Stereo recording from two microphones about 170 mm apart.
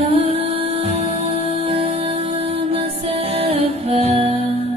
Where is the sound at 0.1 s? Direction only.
35° right (ahead or behind).